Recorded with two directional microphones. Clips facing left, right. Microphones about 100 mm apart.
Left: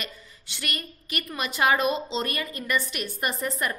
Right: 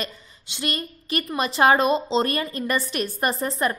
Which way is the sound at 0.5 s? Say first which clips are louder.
Right 6 dB; 25° right (ahead or behind).